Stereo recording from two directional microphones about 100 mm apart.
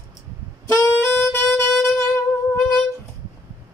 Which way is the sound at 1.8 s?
30° left (ahead or behind).